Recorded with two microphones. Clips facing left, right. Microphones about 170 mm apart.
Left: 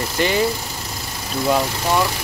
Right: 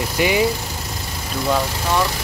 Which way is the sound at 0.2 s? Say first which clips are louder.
Right 1 dB; 10° right (ahead or behind).